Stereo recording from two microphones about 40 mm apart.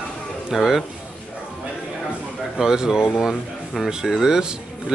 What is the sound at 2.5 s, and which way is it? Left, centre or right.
Speech, centre.